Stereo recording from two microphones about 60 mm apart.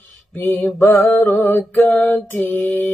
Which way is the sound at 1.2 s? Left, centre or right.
Left.